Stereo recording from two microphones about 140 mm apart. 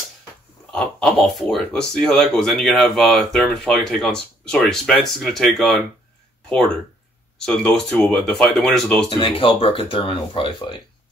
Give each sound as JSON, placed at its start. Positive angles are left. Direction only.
{"t": 0.7, "sound": "speech", "side_deg": 5}
{"t": 7.4, "sound": "speech", "side_deg": 5}
{"t": 9.1, "sound": "speech", "side_deg": 40}